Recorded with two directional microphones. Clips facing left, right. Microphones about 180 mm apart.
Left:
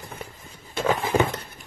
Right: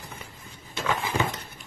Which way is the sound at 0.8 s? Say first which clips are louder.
Left 6 dB; 50° left (ahead or behind).